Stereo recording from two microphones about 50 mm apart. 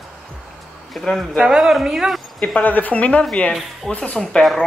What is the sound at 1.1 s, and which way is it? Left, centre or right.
A woman's voice, centre.